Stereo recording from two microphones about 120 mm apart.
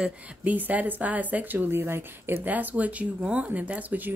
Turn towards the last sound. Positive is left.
turn(degrees=-15)  # may be behind; listen again after turning